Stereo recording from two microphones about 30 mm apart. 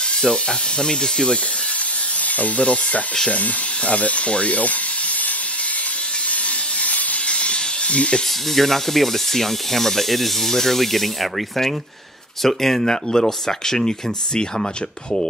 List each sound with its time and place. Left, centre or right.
0.2 s speech: left
2.3 s speech: left
2.6 s speech: left
6.8 s a sound: left
8.5 s speech: centre
12.4 s speech: centre
12.8 s speech: left